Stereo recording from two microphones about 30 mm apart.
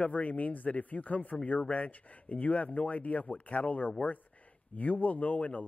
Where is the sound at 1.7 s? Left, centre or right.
Left.